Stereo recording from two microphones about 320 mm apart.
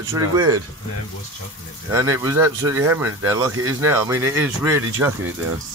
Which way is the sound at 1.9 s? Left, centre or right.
Centre.